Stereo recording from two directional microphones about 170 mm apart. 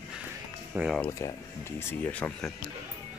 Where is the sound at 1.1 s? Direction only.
20° left (ahead or behind).